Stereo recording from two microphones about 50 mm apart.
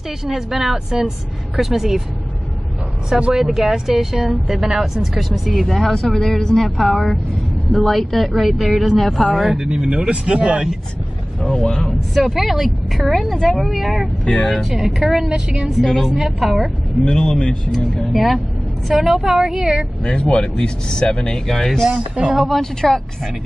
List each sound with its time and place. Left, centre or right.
0.3 s a woman's voice: centre
3.2 s a woman's voice: centre
9.8 s speech: right
11.6 s speech: left
11.9 s a woman's voice: centre
15.2 s a woman's voice: centre
15.8 s a woman's voice: centre
17.0 s speech: centre
17.9 s a woman's voice: centre
18.9 s a woman's voice: centre
20.1 s speech: left
21.3 s speech: centre
22.1 s a woman's voice: centre
22.4 s speech: centre